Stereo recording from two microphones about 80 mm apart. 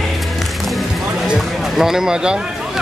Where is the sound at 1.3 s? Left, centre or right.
Centre.